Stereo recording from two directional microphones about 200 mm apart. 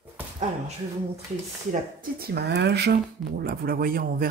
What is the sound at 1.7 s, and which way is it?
A woman's voice, 50° right (ahead or behind).